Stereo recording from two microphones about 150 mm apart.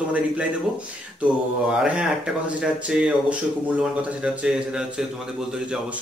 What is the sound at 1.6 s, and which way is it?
Speech, 5° right (ahead or behind).